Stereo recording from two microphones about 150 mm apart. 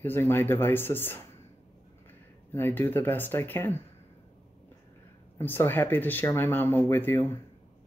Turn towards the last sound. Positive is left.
turn(degrees=15)  # may be behind; listen again after turning